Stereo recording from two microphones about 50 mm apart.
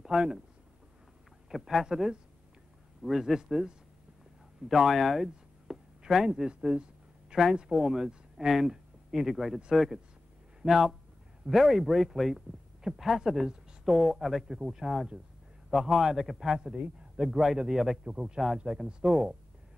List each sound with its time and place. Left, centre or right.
0.0 s speech: centre
1.5 s a man's voice: centre
5.7 s a sound: centre
7.5 s a man's voice: centre